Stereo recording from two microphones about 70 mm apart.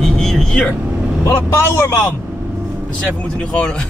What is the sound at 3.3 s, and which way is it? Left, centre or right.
Speech, centre.